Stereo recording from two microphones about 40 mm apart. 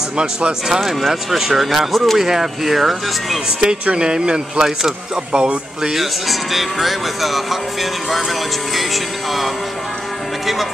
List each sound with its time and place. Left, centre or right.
0.2 s speech: right
0.7 s speech: centre
2.1 s speech: centre
3.6 s speech: right
5.9 s speech: centre